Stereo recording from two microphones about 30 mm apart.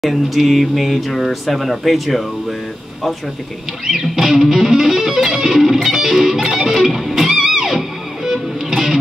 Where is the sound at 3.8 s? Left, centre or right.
Centre.